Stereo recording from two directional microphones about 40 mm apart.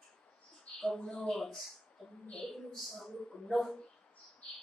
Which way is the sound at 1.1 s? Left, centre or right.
Centre.